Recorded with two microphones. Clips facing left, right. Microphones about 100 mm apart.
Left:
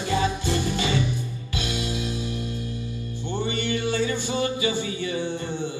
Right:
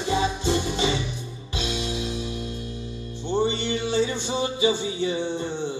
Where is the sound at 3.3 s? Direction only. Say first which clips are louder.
Right 3 dB; 25° right (ahead or behind).